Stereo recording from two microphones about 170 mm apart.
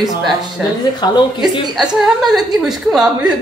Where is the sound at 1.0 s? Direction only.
25° left (ahead or behind).